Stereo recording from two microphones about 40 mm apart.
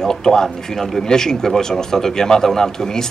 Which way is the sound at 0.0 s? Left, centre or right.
Centre.